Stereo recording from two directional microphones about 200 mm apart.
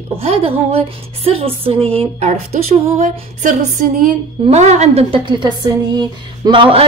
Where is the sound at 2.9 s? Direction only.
40° right (ahead or behind).